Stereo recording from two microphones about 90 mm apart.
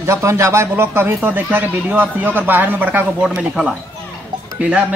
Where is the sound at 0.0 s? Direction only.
30° right (ahead or behind).